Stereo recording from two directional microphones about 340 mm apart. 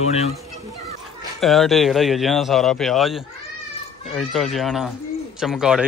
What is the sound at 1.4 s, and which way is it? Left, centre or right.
A man's voice, centre.